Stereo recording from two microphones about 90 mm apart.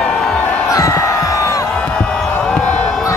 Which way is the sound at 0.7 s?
40° left (ahead or behind).